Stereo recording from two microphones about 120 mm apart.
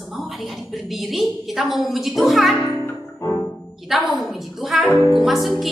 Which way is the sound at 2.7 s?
15° left (ahead or behind).